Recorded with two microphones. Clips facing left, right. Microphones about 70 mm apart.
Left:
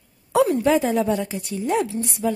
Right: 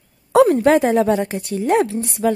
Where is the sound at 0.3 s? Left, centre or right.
Right.